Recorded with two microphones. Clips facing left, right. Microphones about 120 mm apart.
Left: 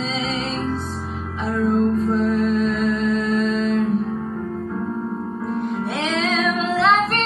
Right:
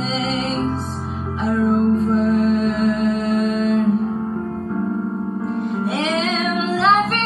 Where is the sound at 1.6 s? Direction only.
30° right (ahead or behind).